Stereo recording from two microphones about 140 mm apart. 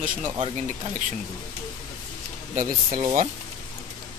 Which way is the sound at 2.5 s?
70° right (ahead or behind).